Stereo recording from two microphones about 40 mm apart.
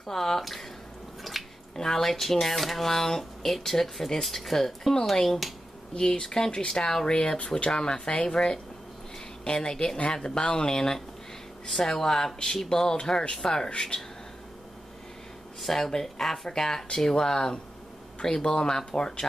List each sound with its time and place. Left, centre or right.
0.0 s speech: centre
1.3 s drip: centre
1.8 s speech: centre
5.9 s speech: centre
15.6 s speech: centre